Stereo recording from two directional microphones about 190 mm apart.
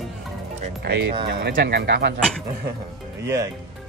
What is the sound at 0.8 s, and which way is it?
Speech, 60° right (ahead or behind).